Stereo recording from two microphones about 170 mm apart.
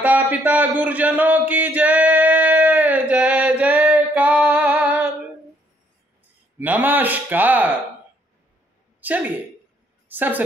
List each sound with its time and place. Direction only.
0.0 s a sound: 10° right (ahead or behind)
6.6 s a man's voice: 10° right (ahead or behind)
9.0 s a woman's voice: 10° right (ahead or behind)